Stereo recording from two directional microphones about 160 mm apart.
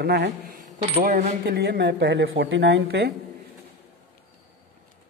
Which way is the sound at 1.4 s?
85° right.